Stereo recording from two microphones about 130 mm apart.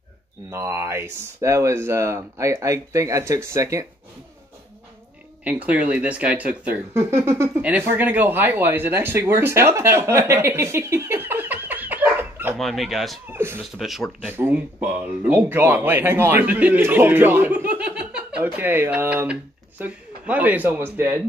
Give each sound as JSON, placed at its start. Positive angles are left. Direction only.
{"t": 0.5, "sound": "speech", "side_deg": -20}
{"t": 5.4, "sound": "speech", "side_deg": -10}
{"t": 12.5, "sound": "speech", "side_deg": 0}
{"t": 13.3, "sound": "speech", "side_deg": -20}
{"t": 13.7, "sound": "speech", "side_deg": 0}
{"t": 14.2, "sound": "speech", "side_deg": -15}